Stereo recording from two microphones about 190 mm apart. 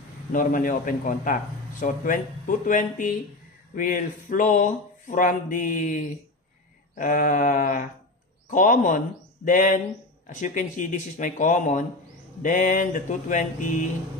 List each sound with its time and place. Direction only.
0.3 s a man's voice: 45° left (ahead or behind)